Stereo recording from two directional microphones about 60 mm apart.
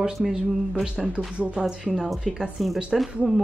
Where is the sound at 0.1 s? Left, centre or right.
Centre.